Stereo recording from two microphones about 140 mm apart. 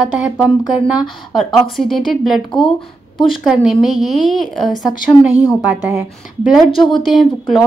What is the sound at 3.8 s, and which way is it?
Speech, centre (ahead or behind).